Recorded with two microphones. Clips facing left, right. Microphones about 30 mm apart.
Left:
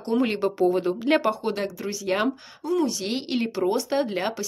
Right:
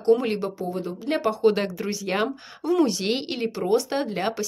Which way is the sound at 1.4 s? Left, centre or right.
Centre.